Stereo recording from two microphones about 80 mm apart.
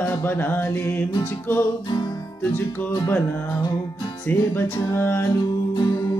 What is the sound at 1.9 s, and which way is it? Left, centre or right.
Music, left.